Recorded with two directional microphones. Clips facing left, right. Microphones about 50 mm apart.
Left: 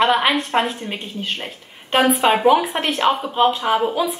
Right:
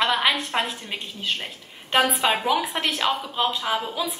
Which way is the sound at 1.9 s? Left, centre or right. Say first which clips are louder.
Left 5 dB; left.